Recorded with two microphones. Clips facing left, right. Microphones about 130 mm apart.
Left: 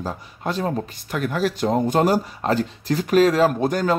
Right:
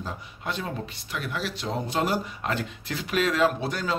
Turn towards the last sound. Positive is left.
turn(degrees=45)  # may be behind; listen again after turning